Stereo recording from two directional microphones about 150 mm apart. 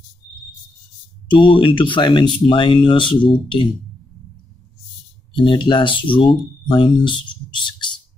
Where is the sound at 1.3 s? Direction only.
35° left (ahead or behind).